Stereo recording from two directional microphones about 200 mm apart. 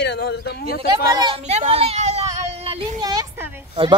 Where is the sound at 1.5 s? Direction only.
30° right (ahead or behind); by 3.5 s 15° right (ahead or behind).